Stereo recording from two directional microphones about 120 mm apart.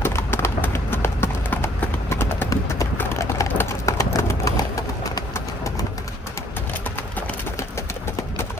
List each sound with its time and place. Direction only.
0.0 s clip-clop: 20° left (ahead or behind)
5.3 s pigeon: 25° left (ahead or behind)